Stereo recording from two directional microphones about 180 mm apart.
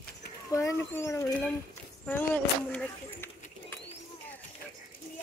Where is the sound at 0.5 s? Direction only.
15° left (ahead or behind).